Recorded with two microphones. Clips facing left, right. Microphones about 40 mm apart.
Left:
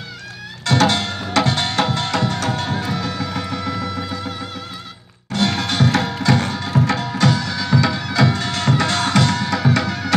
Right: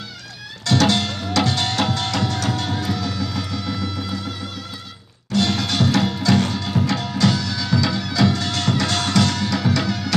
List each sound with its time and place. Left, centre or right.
0.7 s music: left
5.3 s music: left